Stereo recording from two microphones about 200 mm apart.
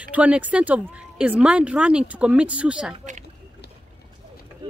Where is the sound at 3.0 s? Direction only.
35° right (ahead or behind).